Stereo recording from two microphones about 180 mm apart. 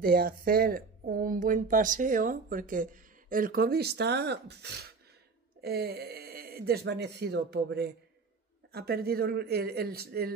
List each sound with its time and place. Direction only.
0.0 s speech: 55° right (ahead or behind)